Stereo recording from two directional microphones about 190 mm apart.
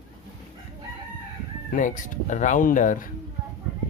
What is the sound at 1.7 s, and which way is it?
Speech, 40° left (ahead or behind).